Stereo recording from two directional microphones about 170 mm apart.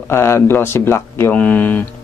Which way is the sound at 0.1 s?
15° left (ahead or behind).